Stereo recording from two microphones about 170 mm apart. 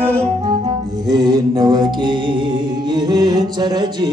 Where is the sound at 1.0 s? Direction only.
25° right (ahead or behind).